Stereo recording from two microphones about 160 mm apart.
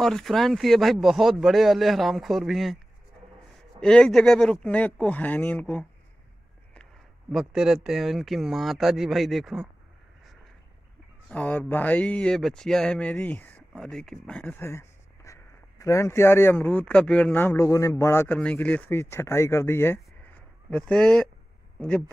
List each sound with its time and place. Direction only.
0.0 s speech: centre (ahead or behind)
3.8 s speech: 5° left (ahead or behind)
7.3 s speech: 5° right (ahead or behind)
11.2 s speech: 10° left (ahead or behind)
14.6 s speech: 15° left (ahead or behind)